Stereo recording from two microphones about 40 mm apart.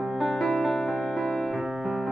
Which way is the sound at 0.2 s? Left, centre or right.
Centre.